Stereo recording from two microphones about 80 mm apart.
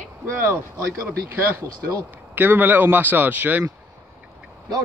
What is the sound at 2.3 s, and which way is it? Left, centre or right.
Speech, right.